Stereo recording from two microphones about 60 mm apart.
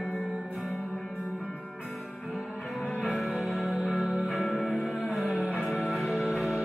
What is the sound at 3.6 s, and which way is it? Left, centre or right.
Music, centre.